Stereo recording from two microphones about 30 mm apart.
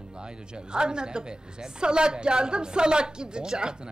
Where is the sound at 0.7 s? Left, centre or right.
Right.